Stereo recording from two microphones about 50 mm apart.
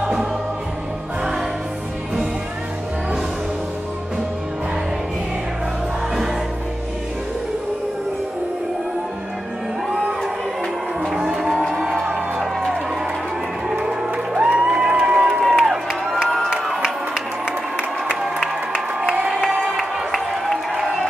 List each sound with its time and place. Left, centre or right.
0.0 s music: centre
11.0 s moo: centre
11.8 s music: centre
13.7 s music: centre
14.7 s crowd: centre
20.2 s crowd: centre